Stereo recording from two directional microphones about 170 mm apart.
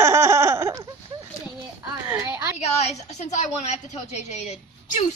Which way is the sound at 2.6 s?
40° left (ahead or behind).